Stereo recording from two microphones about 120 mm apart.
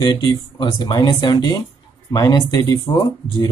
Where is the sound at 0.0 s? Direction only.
40° left (ahead or behind).